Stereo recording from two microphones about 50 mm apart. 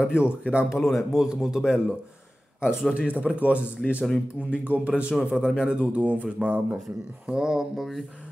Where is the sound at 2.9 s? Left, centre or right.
Right.